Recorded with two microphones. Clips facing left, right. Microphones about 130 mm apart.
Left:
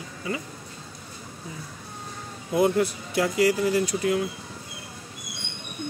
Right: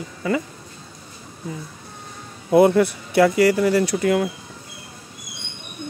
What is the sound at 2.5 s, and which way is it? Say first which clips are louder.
Speech: right 7 dB; 70° right (ahead or behind).